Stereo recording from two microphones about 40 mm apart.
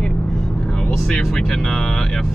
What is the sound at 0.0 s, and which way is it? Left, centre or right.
Vehicle, left.